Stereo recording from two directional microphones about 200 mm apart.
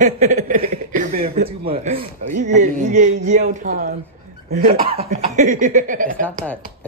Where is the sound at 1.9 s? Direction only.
40° right (ahead or behind).